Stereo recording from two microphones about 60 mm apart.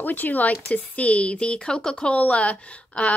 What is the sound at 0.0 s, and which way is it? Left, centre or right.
A woman's voice, left.